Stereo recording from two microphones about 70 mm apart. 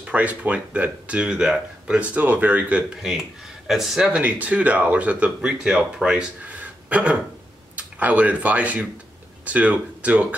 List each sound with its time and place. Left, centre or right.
0.1 s speech: right
2.9 s speech: centre
4.2 s speech: centre